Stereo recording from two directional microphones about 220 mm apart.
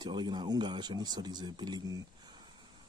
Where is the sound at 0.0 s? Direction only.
20° right (ahead or behind).